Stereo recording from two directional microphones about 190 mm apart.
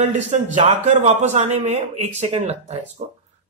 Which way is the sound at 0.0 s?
40° right (ahead or behind).